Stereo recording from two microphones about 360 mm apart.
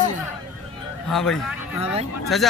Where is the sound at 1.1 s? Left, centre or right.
Centre.